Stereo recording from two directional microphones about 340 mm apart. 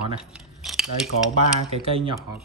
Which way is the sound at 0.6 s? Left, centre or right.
Centre.